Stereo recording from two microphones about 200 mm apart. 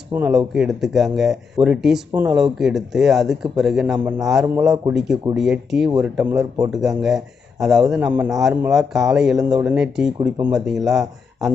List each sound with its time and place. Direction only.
0.1 s speech: 5° right (ahead or behind)
9.4 s speech: 20° right (ahead or behind)
9.7 s speech: 5° right (ahead or behind)